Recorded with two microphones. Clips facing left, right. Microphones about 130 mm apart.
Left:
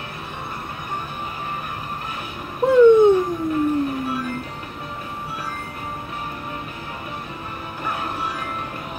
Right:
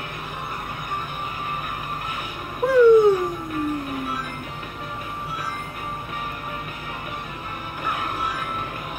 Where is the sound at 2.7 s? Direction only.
25° left (ahead or behind).